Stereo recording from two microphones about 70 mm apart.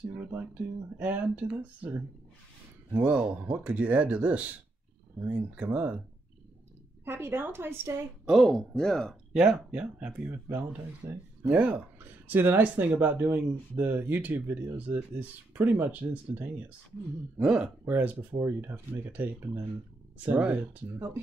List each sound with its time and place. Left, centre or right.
0.1 s speech: right
2.9 s speech: centre
7.1 s a woman's voice: right
8.3 s speech: centre
9.3 s speech: centre
10.2 s speech: right
17.4 s speech: centre
17.8 s speech: right